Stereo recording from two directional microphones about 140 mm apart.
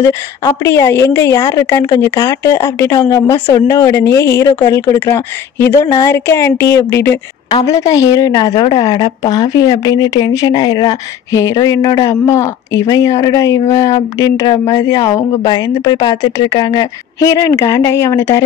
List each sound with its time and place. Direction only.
0.0 s a woman's voice: 20° left (ahead or behind)